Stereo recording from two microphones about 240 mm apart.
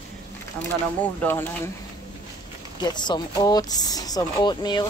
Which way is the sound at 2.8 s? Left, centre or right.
Centre.